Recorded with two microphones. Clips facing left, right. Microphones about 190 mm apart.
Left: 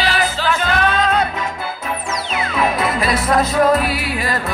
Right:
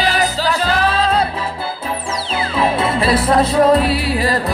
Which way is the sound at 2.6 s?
30° right (ahead or behind).